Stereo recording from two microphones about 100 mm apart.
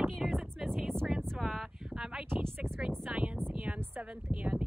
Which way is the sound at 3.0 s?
10° right (ahead or behind).